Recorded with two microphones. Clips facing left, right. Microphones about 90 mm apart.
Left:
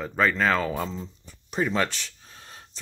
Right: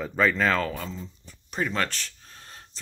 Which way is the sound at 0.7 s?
20° left (ahead or behind).